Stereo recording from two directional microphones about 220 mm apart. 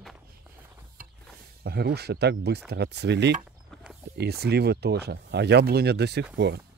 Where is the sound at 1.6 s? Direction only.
45° right (ahead or behind).